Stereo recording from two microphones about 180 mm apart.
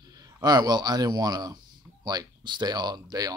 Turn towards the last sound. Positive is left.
turn(degrees=-20)  # may be behind; listen again after turning